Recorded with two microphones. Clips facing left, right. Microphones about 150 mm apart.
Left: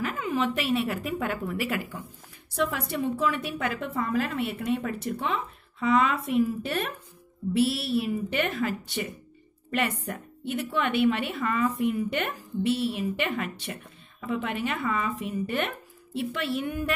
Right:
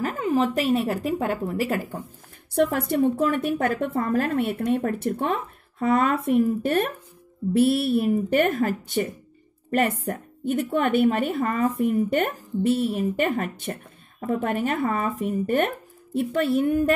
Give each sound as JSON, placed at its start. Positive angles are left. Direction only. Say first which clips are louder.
{"t": 0.0, "sound": "a woman's voice", "louder": "right 5 dB", "side_deg": -40}
{"t": 2.5, "sound": "a woman's voice", "louder": "right 7 dB", "side_deg": -55}